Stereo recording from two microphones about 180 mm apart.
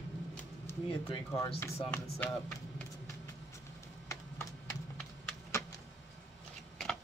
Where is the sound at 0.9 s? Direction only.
25° left (ahead or behind); by 2.8 s 10° left (ahead or behind).